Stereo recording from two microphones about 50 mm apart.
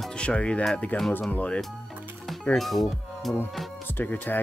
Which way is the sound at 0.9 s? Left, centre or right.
Left.